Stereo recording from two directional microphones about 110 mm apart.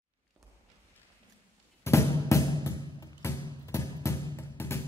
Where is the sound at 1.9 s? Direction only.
25° left (ahead or behind).